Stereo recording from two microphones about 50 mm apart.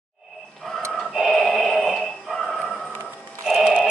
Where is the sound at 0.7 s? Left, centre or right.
Centre.